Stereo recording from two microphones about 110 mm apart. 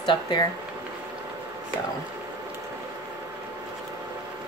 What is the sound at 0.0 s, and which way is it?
Speech, 45° left (ahead or behind).